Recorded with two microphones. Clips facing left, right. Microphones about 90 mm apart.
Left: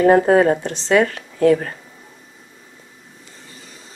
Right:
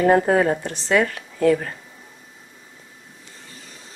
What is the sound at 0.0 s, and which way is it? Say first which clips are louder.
Speech: left 4 dB; 35° left (ahead or behind).